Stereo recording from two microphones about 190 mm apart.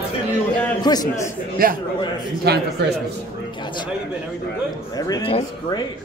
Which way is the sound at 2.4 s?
60° right (ahead or behind).